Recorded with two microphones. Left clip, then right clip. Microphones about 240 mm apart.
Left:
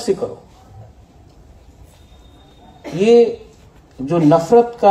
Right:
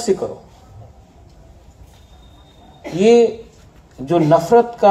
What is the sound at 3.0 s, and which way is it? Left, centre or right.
Speech, right.